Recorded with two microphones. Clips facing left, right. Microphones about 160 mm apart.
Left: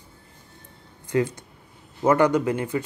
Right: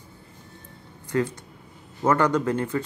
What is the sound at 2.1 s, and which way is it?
Speech, 15° left (ahead or behind).